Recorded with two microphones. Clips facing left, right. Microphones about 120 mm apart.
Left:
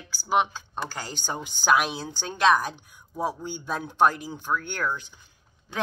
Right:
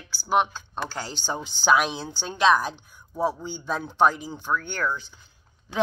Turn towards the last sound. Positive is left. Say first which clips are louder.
# right 1 dB
turn(degrees=10)  # may be behind; listen again after turning